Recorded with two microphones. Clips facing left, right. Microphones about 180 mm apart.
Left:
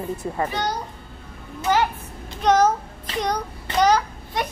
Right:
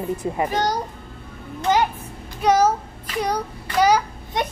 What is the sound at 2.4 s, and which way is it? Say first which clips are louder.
Speech: even; 10° right (ahead or behind).